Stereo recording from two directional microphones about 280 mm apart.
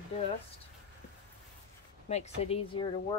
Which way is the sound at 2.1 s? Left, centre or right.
Left.